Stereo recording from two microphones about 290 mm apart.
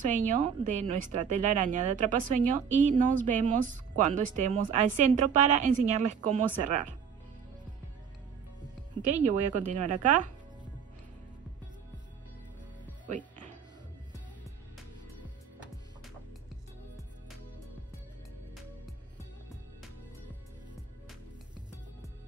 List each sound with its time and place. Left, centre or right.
0.0 s speech: right
9.1 s speech: right
13.0 s music: right